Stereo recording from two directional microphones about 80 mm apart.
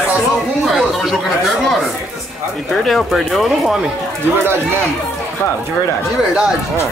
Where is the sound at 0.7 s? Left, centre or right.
Centre.